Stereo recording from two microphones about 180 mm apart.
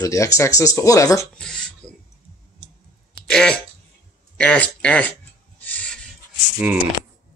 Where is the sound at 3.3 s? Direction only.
5° left (ahead or behind).